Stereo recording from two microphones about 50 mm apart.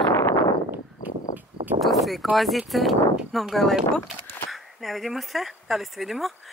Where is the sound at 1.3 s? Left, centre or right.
Right.